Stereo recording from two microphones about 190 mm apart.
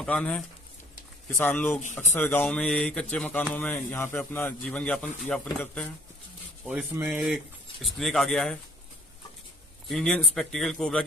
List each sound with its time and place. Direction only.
0.0 s a man's voice: 5° left (ahead or behind)
9.8 s speech: centre (ahead or behind)